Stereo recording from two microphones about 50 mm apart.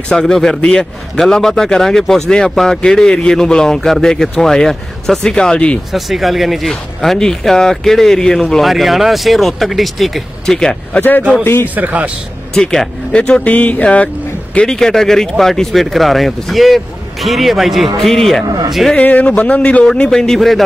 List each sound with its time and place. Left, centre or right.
0.1 s speech: centre
5.9 s speech: centre
6.7 s speech: centre
10.4 s speech: centre
11.0 s a man's voice: left
11.6 s a man's voice: right
13.1 s speech: left
13.5 s speech: left
14.7 s speech: centre
18.9 s speech: left
20.1 s speech: centre